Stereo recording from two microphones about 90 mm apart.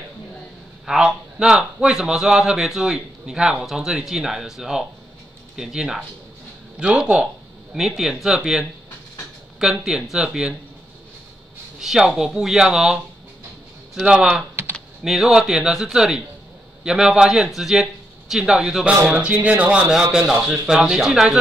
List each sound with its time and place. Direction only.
0.8 s a man's voice: 5° right (ahead or behind)
11.8 s a man's voice: 5° right (ahead or behind)
14.5 s typing: 25° right (ahead or behind)
15.0 s a man's voice: 5° right (ahead or behind)